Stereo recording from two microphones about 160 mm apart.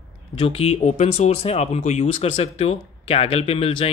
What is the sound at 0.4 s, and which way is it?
Speech, 35° left (ahead or behind).